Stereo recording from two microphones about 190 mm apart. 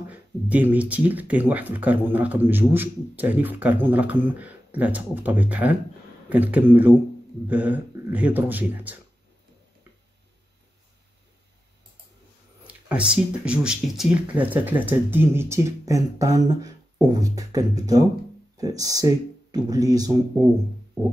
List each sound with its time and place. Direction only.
0.1 s speech: 10° right (ahead or behind)
12.6 s speech: 5° right (ahead or behind)